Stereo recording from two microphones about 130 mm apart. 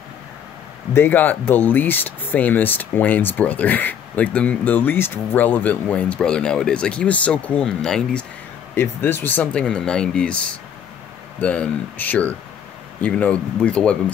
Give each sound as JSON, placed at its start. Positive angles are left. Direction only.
{"t": 0.9, "sound": "speech", "side_deg": 15}
{"t": 11.4, "sound": "speech", "side_deg": 10}